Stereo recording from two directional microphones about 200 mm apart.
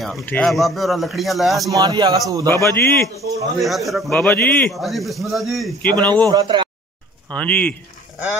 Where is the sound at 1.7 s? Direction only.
20° right (ahead or behind).